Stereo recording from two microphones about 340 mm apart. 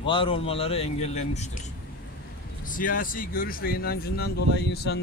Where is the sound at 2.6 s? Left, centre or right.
Left.